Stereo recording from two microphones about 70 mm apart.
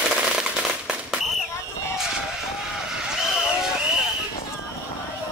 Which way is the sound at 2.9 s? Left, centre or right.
Centre.